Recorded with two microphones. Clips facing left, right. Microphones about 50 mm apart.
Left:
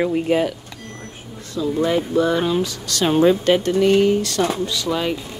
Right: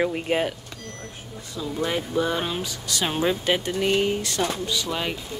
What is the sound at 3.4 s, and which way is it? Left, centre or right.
Speech, centre.